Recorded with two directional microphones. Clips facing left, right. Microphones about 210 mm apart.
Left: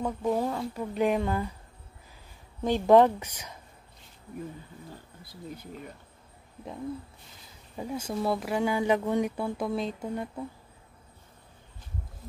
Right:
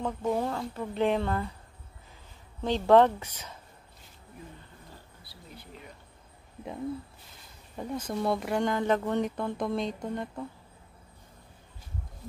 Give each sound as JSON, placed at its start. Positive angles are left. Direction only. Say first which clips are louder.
{"t": 0.0, "sound": "speech", "louder": "left 1 dB", "side_deg": 5}
{"t": 2.6, "sound": "speech", "louder": "left 1 dB", "side_deg": 10}
{"t": 7.7, "sound": "speech", "louder": "even", "side_deg": 10}